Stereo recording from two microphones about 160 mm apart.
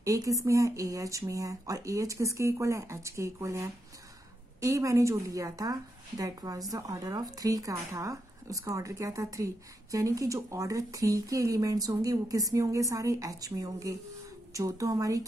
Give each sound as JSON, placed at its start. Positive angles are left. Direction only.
{"t": 0.0, "sound": "a woman's voice", "side_deg": -20}